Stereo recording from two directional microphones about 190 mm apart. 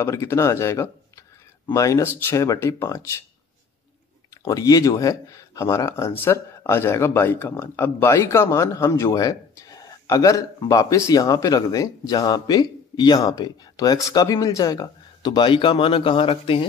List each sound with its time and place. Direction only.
0.0 s speech: 15° left (ahead or behind)
4.3 s speech: 20° left (ahead or behind)